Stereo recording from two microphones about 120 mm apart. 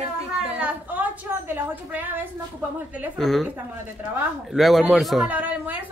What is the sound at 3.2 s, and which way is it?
Speech, centre (ahead or behind).